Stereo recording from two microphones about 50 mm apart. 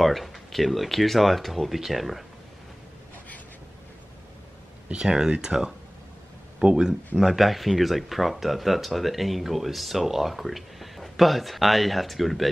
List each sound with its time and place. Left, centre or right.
0.0 s speech: centre
4.9 s speech: centre
7.2 s speech: centre